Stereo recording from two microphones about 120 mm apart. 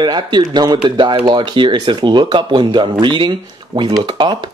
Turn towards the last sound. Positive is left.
turn(degrees=-40)  # may be behind; listen again after turning